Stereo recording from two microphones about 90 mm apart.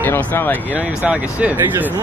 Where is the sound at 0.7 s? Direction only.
20° right (ahead or behind).